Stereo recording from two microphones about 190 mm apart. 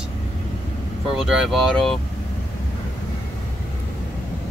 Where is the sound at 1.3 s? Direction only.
Centre (ahead or behind).